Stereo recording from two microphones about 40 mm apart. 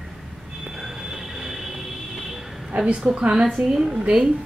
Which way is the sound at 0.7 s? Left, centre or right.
Centre.